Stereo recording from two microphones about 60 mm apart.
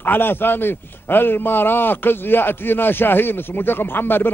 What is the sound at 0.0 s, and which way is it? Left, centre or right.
A man's voice, left.